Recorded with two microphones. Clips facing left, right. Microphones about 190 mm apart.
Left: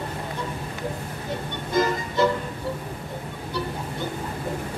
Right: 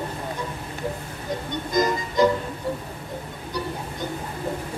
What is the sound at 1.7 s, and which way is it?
Music, 15° right (ahead or behind).